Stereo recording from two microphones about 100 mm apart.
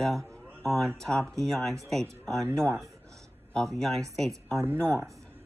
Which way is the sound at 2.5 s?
30° right (ahead or behind).